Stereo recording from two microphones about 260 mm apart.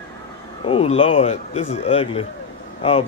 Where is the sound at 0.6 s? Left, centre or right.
Left.